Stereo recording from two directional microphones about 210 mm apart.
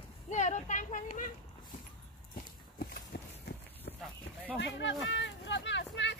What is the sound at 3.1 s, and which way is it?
Run, 50° left (ahead or behind).